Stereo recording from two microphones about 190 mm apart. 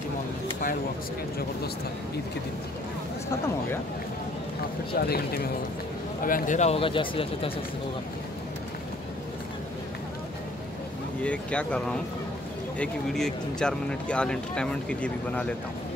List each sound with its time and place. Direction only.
4.9 s speech: 55° left (ahead or behind); by 7.5 s 30° left (ahead or behind)
11.2 s speech: 5° left (ahead or behind)